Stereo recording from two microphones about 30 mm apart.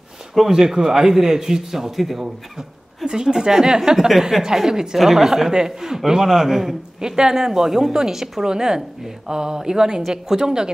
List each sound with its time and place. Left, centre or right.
0.5 s a man's voice: centre
3.1 s a woman's voice: right
7.0 s a woman's voice: right